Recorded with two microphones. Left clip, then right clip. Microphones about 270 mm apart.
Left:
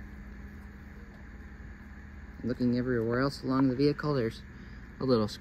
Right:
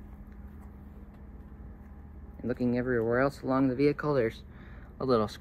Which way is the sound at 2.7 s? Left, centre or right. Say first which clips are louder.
Right 3 dB; centre.